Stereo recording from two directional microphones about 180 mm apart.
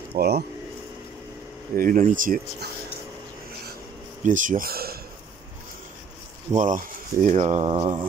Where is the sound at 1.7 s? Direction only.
50° right (ahead or behind).